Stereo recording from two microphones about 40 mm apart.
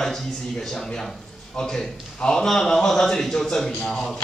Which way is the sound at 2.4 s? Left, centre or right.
Centre.